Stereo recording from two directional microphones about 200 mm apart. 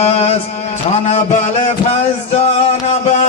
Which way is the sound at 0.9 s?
35° left (ahead or behind).